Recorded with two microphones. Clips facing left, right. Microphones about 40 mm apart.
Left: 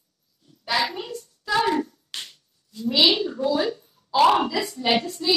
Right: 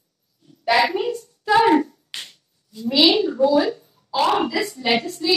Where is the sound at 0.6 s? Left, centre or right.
Right.